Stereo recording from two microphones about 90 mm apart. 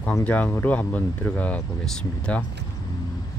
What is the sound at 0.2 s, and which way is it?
Speech, 15° left (ahead or behind).